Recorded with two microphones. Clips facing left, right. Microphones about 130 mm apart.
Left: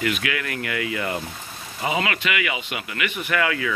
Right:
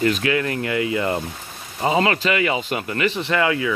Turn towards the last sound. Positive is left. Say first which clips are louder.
# right 3 dB
turn(degrees=-25)  # may be behind; listen again after turning